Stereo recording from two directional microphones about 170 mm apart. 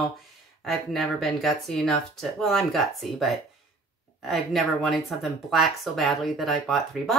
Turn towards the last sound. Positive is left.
turn(degrees=0)  # may be behind; listen again after turning